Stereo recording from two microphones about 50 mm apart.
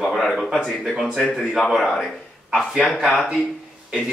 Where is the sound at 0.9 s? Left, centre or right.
Centre.